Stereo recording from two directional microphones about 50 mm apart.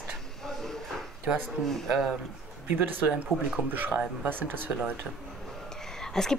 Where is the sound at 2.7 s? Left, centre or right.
Right.